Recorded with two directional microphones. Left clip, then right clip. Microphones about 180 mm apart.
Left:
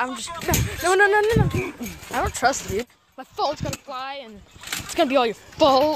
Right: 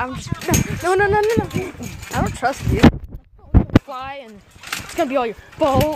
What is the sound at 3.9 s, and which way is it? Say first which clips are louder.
Speech: right 2 dB; 5° right (ahead or behind).